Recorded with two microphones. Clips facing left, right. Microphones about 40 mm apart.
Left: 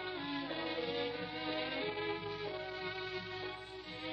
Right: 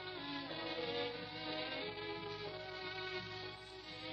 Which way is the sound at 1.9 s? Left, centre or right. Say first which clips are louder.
Left 6 dB; left.